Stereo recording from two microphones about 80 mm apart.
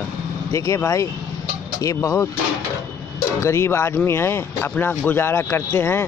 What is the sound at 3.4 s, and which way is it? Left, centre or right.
Speech, left.